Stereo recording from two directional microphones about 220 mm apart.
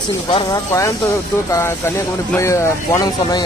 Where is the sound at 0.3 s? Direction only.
15° left (ahead or behind).